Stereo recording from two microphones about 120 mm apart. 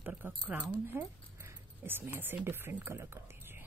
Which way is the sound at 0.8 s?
20° right (ahead or behind).